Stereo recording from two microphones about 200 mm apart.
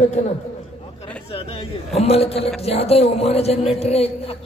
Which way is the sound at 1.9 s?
30° left (ahead or behind).